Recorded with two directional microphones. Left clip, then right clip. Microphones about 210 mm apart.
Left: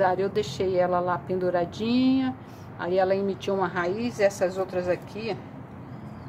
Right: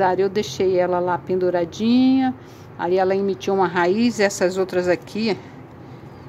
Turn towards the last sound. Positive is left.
turn(degrees=-40)  # may be behind; listen again after turning